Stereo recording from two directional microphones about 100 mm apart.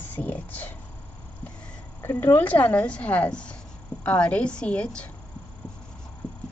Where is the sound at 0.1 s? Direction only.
20° left (ahead or behind).